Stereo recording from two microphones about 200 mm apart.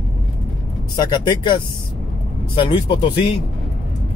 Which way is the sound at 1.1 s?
20° left (ahead or behind).